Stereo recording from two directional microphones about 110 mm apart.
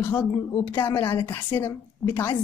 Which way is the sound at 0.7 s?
20° left (ahead or behind).